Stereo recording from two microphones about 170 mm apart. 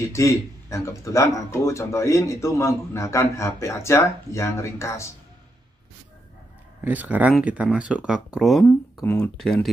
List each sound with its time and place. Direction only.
0.1 s speech: 15° left (ahead or behind)
6.8 s speech: 10° right (ahead or behind)